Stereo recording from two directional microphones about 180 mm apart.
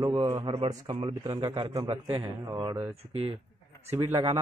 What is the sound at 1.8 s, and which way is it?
A man's voice, 30° right (ahead or behind).